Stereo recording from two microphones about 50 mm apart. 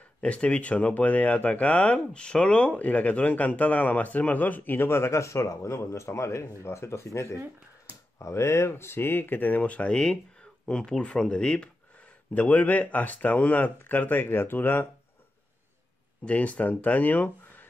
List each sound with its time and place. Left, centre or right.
0.2 s speech: left
12.4 s speech: left
16.3 s speech: left